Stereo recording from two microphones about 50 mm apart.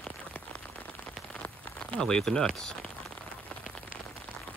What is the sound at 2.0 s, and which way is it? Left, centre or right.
Speech, centre.